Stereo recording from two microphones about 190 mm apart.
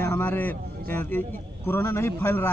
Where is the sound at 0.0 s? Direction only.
10° left (ahead or behind).